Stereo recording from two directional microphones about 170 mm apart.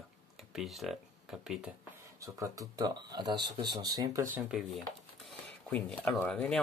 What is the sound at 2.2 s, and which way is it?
Speech, 20° right (ahead or behind).